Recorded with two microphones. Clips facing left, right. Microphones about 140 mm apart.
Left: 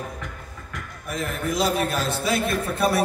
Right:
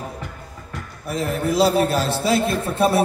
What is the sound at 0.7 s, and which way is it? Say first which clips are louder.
A man's voice: right 4 dB; 30° right (ahead or behind).